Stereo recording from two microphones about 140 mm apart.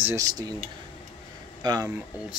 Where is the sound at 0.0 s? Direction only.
25° right (ahead or behind).